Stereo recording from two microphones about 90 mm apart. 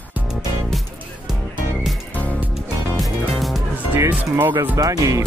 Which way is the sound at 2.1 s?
20° left (ahead or behind).